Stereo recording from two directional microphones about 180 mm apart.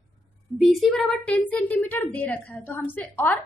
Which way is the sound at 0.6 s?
Centre (ahead or behind).